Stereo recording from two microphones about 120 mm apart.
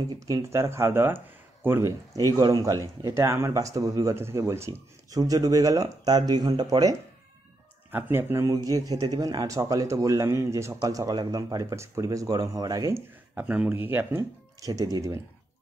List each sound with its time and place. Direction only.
0.1 s speech: 25° right (ahead or behind)
7.9 s speech: 20° right (ahead or behind)
13.3 s speech: 10° right (ahead or behind)
14.6 s speech: 30° right (ahead or behind)